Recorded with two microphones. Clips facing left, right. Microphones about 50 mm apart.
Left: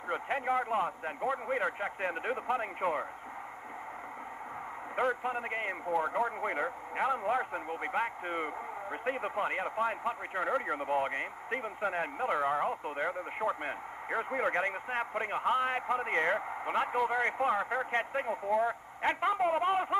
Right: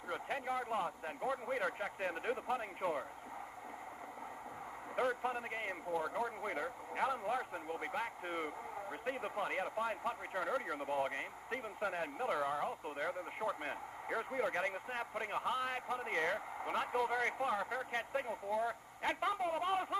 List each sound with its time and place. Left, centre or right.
0.1 s speech: left
4.9 s speech: left